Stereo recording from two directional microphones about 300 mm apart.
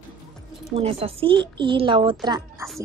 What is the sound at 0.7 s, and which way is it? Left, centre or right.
A woman's voice, centre.